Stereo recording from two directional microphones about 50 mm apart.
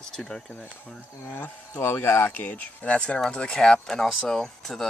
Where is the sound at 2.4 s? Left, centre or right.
Left; by 4.9 s centre.